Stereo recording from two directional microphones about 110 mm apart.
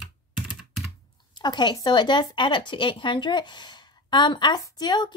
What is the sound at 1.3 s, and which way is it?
Speech, 40° left (ahead or behind).